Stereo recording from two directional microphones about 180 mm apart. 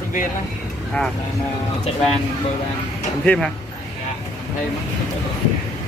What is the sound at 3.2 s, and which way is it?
Speech, 5° left (ahead or behind).